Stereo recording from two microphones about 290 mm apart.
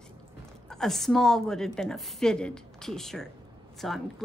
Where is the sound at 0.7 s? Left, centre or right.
Centre.